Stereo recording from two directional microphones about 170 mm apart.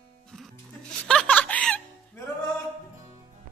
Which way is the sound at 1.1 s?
5° left (ahead or behind).